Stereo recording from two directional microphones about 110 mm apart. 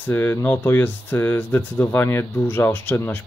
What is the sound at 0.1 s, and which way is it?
Speech, 20° left (ahead or behind).